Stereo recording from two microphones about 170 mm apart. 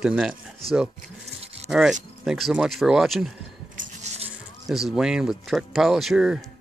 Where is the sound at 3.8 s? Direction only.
40° right (ahead or behind).